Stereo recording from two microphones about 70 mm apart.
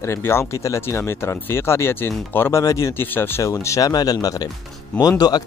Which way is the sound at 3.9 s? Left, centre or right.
Left.